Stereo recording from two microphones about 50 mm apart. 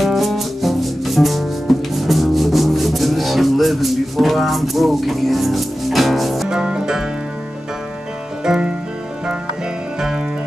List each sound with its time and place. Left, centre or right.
0.0 s music: centre
6.5 s music: centre
8.5 s music: centre
9.9 s music: centre